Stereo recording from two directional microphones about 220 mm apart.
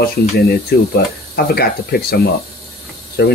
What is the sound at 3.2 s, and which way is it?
Speech, 50° left (ahead or behind).